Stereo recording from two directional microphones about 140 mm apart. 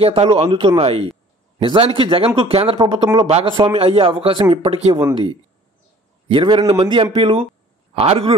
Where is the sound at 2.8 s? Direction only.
30° right (ahead or behind).